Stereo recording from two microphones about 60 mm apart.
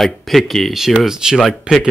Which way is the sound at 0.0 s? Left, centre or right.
Centre.